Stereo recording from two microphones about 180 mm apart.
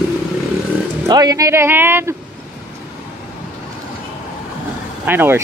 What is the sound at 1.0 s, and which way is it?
Speech, 20° right (ahead or behind).